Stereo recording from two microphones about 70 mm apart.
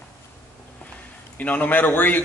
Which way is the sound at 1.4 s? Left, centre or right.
Left.